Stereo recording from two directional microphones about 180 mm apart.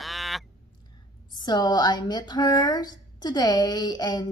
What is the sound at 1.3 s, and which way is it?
A woman's voice, 25° left (ahead or behind).